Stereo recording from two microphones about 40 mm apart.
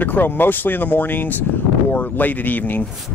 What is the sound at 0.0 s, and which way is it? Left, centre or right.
Speech, left.